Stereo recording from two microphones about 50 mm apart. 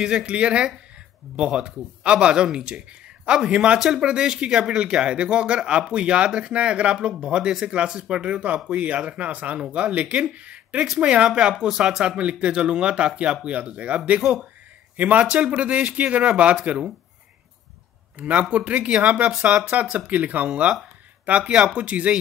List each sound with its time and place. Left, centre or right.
0.0 s speech: centre
18.1 s speech: right
21.7 s speech: right